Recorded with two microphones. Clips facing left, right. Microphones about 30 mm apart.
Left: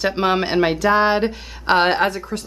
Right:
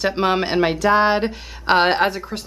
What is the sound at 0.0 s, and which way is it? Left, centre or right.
Speech, centre.